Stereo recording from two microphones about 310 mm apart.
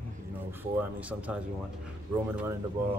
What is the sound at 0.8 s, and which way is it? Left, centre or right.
Speech, centre.